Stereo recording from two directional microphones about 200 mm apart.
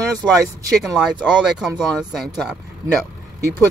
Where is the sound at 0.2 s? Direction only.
Centre (ahead or behind).